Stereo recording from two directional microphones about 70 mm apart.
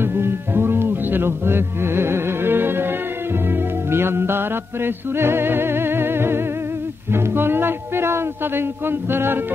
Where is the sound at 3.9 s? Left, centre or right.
Right.